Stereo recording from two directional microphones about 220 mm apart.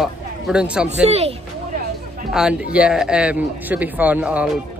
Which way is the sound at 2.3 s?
5° right (ahead or behind).